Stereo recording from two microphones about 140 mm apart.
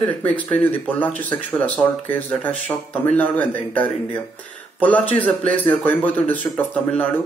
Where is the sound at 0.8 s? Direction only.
10° left (ahead or behind).